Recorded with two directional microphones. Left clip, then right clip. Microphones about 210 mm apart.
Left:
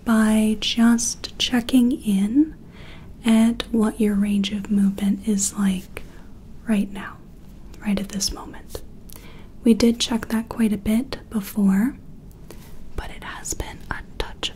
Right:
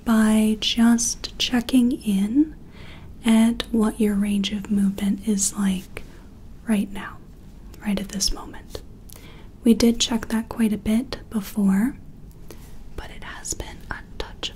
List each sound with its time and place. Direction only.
0.0 s speech: centre (ahead or behind)
12.9 s whispering: 15° left (ahead or behind)